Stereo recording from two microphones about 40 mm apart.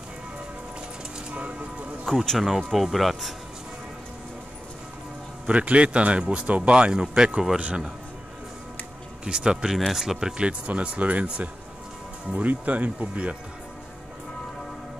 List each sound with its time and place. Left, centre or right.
1.3 s music: right
2.3 s speech: centre
5.5 s speech: right
9.2 s speech: centre
9.8 s speech: centre
10.3 s speech: right
12.4 s speech: right